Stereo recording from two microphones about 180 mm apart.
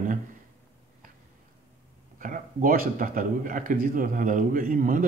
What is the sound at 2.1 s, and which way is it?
A man's voice, 50° right (ahead or behind).